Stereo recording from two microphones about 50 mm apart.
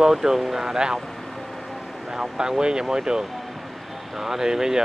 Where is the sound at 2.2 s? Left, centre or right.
Centre.